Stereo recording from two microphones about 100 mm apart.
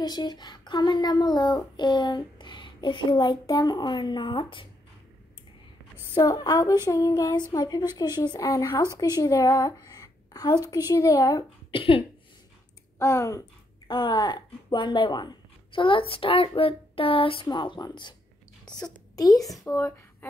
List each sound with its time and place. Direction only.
0.0 s speech: 45° left (ahead or behind)
6.3 s a woman's voice: 45° left (ahead or behind)
11.7 s cough: 65° left (ahead or behind)
13.0 s speech: 30° left (ahead or behind)
13.8 s speech: 55° left (ahead or behind)
17.5 s speech: 45° left (ahead or behind)
19.7 s speech: 25° left (ahead or behind)